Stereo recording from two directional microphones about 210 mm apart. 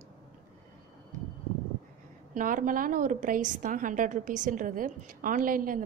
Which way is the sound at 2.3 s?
40° right (ahead or behind).